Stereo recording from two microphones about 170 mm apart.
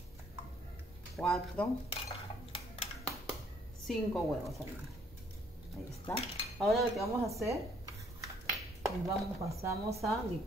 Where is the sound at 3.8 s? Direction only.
Centre (ahead or behind).